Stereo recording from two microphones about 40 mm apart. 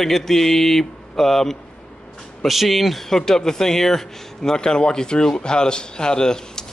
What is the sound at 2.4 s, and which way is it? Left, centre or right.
Speech, centre.